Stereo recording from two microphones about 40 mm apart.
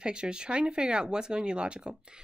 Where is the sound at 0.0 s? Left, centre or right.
Right.